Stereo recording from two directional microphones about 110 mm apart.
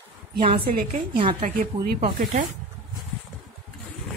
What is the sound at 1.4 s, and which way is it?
Speech, 90° right.